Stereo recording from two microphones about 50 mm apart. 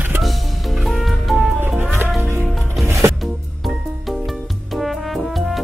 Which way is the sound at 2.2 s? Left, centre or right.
Right.